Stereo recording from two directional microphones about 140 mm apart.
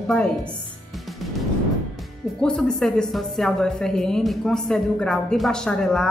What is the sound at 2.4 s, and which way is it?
A woman's voice, 5° left (ahead or behind).